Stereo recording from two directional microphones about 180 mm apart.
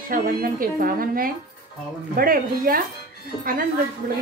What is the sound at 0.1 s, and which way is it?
Speech, 50° right (ahead or behind).